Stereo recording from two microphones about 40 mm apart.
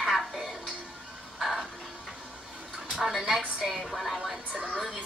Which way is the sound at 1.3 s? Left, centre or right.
Centre.